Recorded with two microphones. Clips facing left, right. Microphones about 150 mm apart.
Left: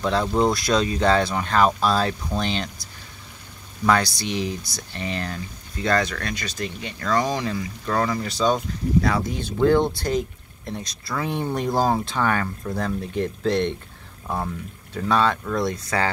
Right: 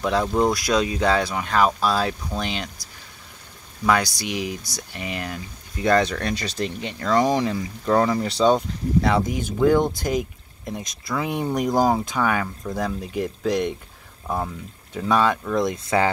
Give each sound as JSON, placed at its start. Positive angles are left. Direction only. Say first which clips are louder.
{"t": 0.0, "sound": "speech", "louder": "even", "side_deg": -10}
{"t": 3.8, "sound": "speech", "louder": "even", "side_deg": -10}
{"t": 6.1, "sound": "speech", "louder": "right 4 dB", "side_deg": -30}
{"t": 14.2, "sound": "speech", "louder": "right 1 dB", "side_deg": 0}
{"t": 15.0, "sound": "speech", "louder": "right 1 dB", "side_deg": -15}